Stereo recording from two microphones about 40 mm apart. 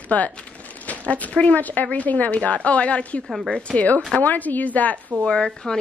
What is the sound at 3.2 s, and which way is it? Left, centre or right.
Speech, centre.